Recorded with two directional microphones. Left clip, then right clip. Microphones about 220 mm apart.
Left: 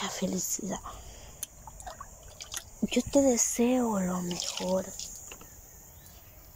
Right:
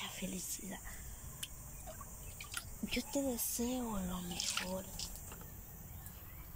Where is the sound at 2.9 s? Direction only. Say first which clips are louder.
Left 14 dB; 40° left (ahead or behind).